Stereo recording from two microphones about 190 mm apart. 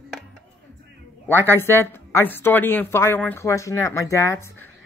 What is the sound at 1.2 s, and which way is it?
Speech, 10° left (ahead or behind).